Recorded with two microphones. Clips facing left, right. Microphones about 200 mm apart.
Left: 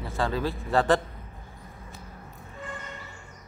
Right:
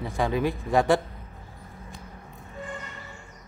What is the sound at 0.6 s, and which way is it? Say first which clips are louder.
Speech: even; 15° right (ahead or behind).